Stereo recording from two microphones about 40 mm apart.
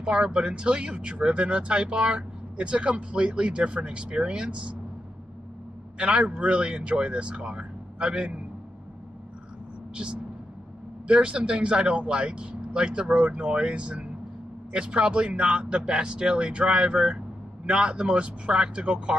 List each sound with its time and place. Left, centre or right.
0.0 s speech: right
5.9 s speech: right
11.1 s speech: right